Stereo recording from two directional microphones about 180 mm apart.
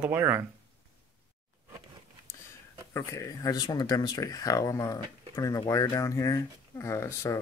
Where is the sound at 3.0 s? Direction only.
20° left (ahead or behind).